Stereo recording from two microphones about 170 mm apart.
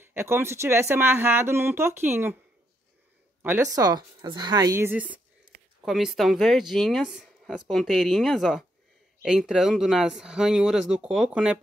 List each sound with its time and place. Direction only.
0.0 s speech: 15° right (ahead or behind)
3.4 s a woman's voice: 15° right (ahead or behind)